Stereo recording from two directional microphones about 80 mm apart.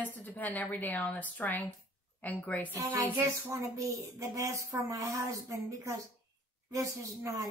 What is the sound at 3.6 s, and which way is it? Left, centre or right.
A woman's voice, right.